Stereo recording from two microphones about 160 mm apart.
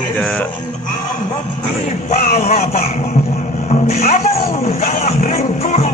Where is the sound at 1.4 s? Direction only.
50° left (ahead or behind).